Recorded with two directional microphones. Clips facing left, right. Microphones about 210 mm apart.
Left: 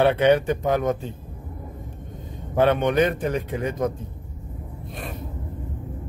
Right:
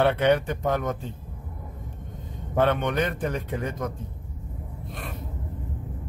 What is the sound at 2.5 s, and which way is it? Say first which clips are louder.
Speech: left 4 dB; 15° left (ahead or behind).